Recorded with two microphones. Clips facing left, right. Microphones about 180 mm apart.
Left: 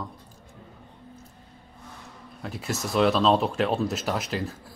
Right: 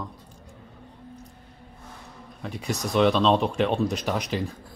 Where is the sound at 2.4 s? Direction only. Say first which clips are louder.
Right 1 dB; centre (ahead or behind).